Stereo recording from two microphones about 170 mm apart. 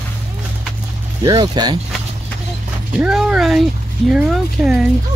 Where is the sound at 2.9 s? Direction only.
5° right (ahead or behind).